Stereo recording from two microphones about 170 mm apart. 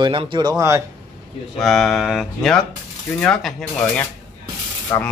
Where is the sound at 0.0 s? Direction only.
30° right (ahead or behind).